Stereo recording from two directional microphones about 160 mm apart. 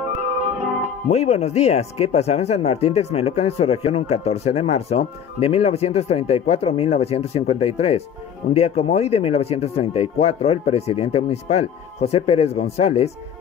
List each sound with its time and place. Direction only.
0.4 s music: 10° right (ahead or behind)
1.1 s speech: 40° left (ahead or behind)